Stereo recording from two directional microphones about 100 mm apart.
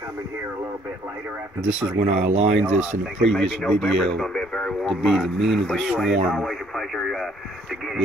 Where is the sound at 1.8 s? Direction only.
90° right.